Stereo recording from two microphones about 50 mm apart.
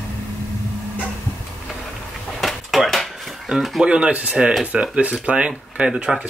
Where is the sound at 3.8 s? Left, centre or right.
Centre.